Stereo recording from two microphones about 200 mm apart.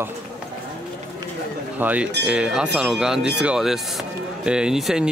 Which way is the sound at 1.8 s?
10° right (ahead or behind).